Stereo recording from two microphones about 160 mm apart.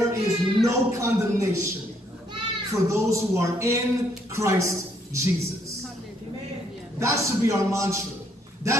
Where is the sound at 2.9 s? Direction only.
15° right (ahead or behind).